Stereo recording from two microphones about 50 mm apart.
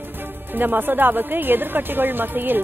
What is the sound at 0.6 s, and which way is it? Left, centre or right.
A woman's voice, right.